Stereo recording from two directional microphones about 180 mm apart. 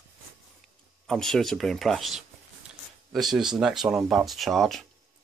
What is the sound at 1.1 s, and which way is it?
Speech, centre (ahead or behind).